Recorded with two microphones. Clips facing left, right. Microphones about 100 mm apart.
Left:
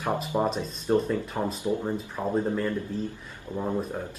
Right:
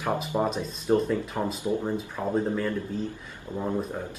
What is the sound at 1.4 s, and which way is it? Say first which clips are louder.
Speech: even; 10° left (ahead or behind).